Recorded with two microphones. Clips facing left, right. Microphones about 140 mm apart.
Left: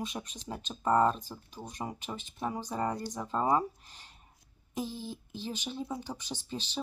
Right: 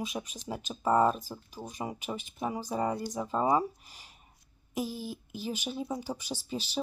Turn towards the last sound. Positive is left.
turn(degrees=-10)  # may be behind; listen again after turning